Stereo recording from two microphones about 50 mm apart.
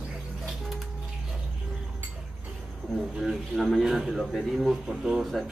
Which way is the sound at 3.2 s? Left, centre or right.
Centre.